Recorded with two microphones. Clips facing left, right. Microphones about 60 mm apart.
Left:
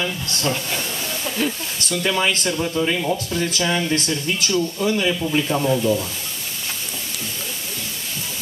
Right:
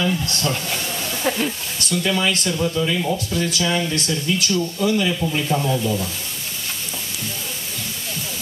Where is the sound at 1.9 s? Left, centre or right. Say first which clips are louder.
Even; left.